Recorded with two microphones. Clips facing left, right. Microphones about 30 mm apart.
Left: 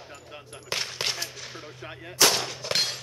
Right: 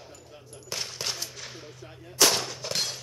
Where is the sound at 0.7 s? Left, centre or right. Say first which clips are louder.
Left 4 dB; left.